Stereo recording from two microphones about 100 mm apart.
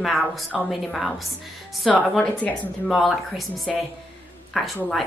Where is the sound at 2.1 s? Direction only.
15° left (ahead or behind).